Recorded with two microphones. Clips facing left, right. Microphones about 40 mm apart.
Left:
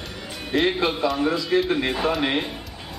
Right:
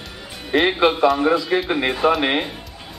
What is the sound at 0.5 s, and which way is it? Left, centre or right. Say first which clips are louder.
Speech: right 5 dB; right.